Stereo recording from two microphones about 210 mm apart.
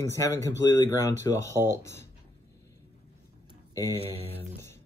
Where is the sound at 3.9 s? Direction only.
25° left (ahead or behind).